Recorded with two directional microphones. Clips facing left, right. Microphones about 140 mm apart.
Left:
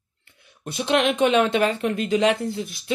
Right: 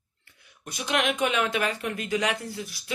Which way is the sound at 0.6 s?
25° left (ahead or behind).